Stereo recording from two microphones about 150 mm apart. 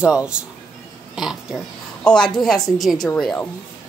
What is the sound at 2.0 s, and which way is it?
A woman's voice, 5° left (ahead or behind).